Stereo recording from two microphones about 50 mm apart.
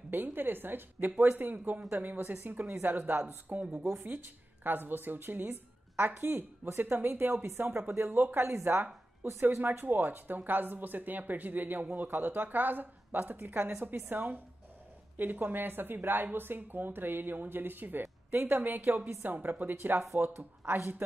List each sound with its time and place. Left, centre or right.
0.1 s speech: right
8.0 s speech: right
18.0 s a sound: right
18.5 s speech: right
20.3 s speech: right